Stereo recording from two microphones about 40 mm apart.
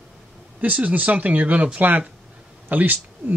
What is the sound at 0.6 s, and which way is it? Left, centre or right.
Speech, right.